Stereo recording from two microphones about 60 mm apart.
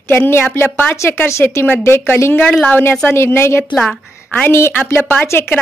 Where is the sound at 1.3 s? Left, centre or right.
Left.